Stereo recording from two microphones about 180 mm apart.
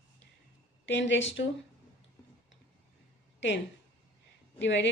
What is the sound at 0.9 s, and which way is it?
Speech, 85° left.